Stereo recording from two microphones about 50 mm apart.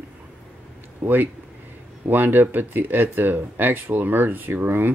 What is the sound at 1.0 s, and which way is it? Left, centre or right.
Speech, right.